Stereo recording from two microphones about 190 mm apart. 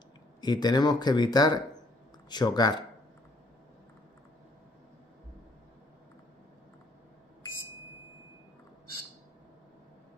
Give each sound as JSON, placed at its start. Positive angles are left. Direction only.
{"t": 0.4, "sound": "speech", "side_deg": 20}